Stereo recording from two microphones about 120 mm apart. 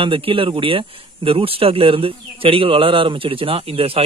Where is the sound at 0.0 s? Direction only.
50° right (ahead or behind).